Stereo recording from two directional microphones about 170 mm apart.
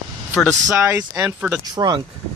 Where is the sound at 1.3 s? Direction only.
10° right (ahead or behind).